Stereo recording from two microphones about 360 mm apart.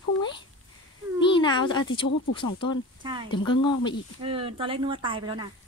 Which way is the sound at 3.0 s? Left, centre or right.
Centre.